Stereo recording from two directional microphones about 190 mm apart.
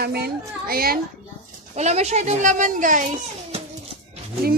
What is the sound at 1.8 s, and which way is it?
A woman's voice, 35° right (ahead or behind).